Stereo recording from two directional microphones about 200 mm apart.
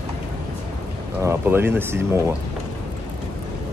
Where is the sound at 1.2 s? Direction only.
10° right (ahead or behind).